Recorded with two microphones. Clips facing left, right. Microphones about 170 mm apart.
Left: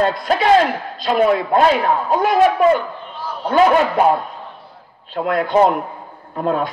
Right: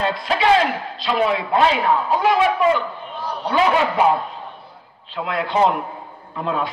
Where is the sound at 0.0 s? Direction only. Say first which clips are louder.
Left 3 dB; 45° left (ahead or behind).